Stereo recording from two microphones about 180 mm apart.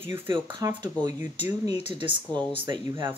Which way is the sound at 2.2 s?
10° left (ahead or behind).